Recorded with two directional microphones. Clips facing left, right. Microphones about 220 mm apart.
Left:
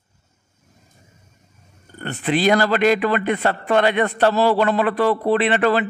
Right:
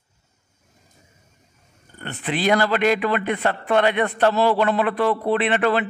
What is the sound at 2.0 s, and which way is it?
A man's voice, 40° left (ahead or behind).